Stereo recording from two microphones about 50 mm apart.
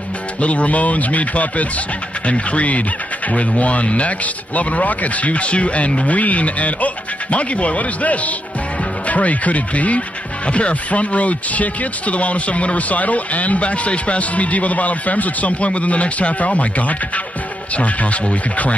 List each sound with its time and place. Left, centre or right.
0.4 s speech: left